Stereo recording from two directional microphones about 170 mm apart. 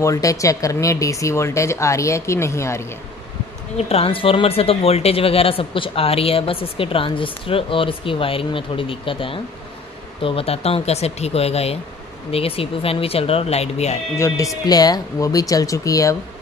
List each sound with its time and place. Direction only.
0.0 s speech: 20° left (ahead or behind)
3.7 s a woman's voice: 35° left (ahead or behind)
14.1 s speech: 15° left (ahead or behind)